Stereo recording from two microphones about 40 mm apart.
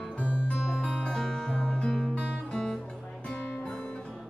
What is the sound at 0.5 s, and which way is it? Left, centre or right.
Music, centre.